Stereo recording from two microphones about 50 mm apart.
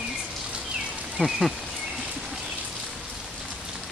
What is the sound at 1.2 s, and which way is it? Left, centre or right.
Speech, centre.